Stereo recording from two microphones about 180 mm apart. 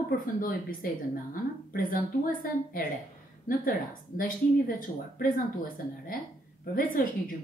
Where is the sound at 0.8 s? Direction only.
50° left (ahead or behind).